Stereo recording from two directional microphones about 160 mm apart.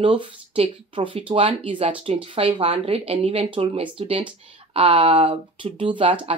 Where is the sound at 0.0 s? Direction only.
30° right (ahead or behind).